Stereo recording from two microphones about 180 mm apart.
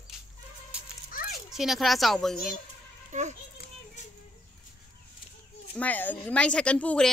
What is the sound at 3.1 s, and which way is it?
Speech, 40° right (ahead or behind).